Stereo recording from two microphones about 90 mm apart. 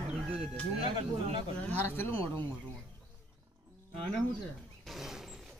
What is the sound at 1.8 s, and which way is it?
Speech, 25° left (ahead or behind).